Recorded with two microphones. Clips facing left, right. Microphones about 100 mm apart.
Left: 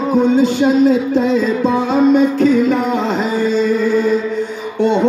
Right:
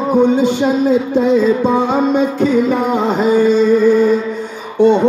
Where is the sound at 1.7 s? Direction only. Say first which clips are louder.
Left 1 dB; 20° right (ahead or behind).